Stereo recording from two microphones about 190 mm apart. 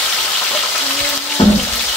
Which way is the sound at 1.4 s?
25° left (ahead or behind).